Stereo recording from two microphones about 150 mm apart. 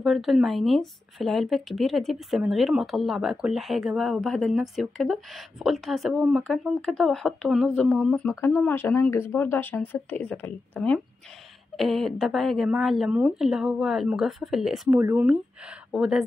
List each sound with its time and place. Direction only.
0.0 s speech: centre (ahead or behind)
15.0 s speech: 15° right (ahead or behind)
15.2 s speech: 5° right (ahead or behind)